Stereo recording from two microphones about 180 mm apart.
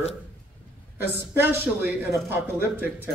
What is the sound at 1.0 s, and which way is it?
A man's voice, 10° right (ahead or behind).